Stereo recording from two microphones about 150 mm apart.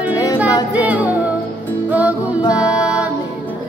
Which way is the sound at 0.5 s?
25° left (ahead or behind).